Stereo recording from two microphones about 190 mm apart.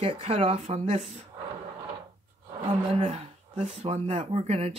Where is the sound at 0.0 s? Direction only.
30° right (ahead or behind).